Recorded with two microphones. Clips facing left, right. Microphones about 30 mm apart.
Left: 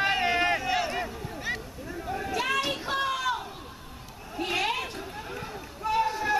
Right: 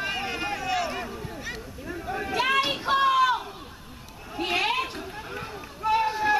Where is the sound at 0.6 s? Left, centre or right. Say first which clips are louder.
Even; centre.